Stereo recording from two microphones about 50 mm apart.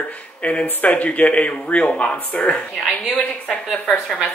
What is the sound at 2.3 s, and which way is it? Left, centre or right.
Speech, left.